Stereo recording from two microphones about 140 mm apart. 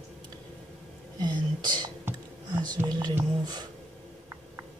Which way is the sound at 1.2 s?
30° right (ahead or behind).